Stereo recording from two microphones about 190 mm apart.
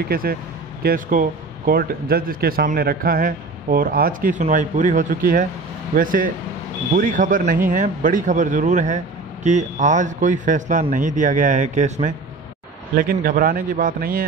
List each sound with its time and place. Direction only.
0.1 s a man's voice: 50° right (ahead or behind)
12.9 s a man's voice: 50° right (ahead or behind)